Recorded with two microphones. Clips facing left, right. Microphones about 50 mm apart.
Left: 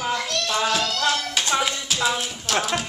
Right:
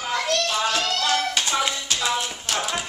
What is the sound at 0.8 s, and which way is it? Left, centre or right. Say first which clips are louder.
Speech: even; right.